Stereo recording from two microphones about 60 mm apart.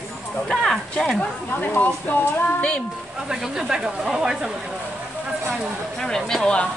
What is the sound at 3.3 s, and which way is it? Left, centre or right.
Speech, centre.